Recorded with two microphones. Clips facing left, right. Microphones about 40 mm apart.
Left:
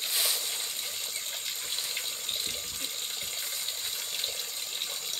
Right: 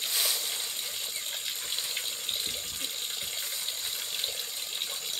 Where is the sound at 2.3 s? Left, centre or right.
Right.